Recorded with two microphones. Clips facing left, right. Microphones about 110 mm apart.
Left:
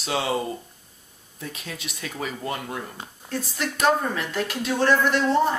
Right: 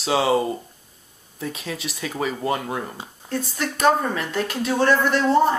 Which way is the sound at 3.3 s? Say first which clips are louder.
Right 3 dB; centre (ahead or behind).